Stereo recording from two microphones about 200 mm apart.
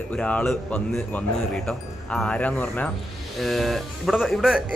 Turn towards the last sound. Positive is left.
turn(degrees=0)  # may be behind; listen again after turning